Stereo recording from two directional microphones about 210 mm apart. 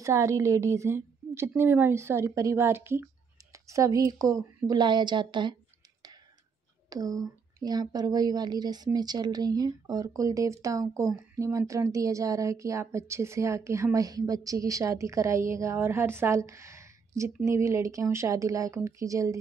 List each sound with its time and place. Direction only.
0.0 s a woman's voice: 15° right (ahead or behind)
6.9 s speech: 15° right (ahead or behind)